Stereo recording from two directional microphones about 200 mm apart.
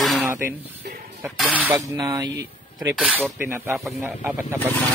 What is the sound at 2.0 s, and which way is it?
Speech, 20° right (ahead or behind).